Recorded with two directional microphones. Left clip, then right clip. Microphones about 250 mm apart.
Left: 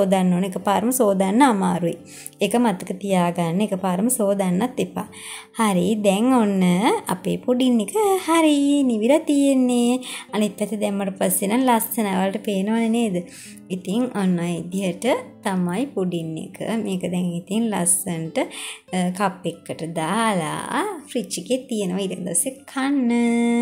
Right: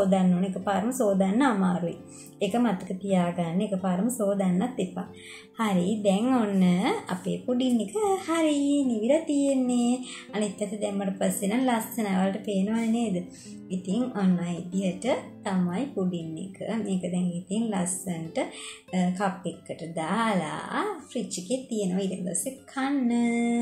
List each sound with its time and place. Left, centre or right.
0.1 s a woman's voice: left